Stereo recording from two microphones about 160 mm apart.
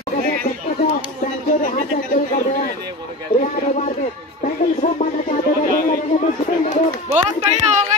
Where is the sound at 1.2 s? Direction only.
55° left (ahead or behind).